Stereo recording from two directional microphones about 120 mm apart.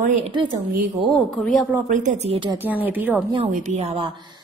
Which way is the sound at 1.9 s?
90° right.